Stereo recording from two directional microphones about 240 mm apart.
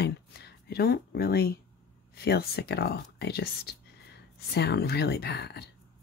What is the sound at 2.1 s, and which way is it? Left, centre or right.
Speech, left.